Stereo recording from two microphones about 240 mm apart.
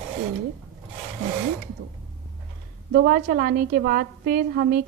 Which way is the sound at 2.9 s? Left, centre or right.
Right.